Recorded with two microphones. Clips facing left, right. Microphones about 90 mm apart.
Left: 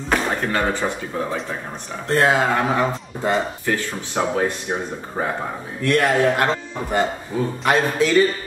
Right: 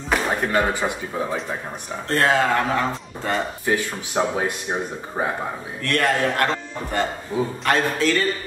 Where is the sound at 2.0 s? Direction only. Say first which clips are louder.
Left 2 dB; 15° left (ahead or behind).